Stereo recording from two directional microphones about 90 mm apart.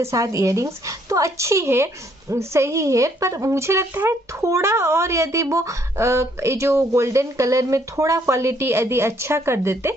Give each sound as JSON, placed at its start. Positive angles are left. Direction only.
{"t": 0.0, "sound": "speech", "side_deg": -40}